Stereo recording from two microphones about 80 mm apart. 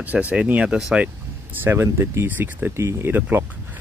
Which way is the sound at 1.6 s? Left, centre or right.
Right.